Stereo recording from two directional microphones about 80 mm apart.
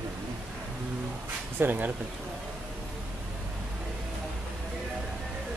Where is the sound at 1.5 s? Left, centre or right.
Right.